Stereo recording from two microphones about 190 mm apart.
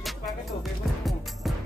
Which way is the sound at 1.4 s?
Centre (ahead or behind).